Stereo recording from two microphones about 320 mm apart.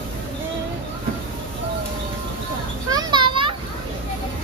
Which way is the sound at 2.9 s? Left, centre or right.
Centre.